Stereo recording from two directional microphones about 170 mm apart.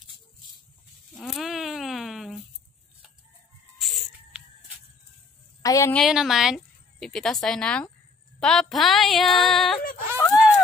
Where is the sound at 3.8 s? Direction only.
Centre (ahead or behind).